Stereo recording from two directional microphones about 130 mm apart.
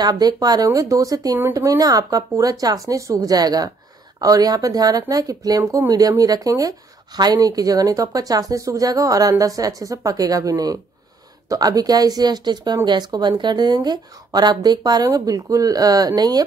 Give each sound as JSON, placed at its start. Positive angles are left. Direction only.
{"t": 0.0, "sound": "speech", "side_deg": -30}